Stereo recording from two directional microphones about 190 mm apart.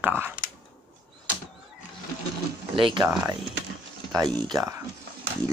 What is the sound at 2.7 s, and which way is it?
Speech, 25° right (ahead or behind).